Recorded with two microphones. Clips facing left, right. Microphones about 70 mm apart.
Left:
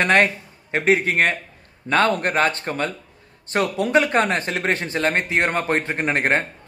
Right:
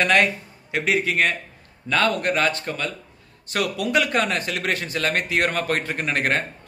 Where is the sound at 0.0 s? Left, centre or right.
Left.